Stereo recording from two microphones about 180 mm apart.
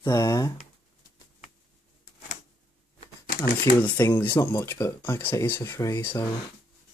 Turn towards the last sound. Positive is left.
turn(degrees=15)  # may be behind; listen again after turning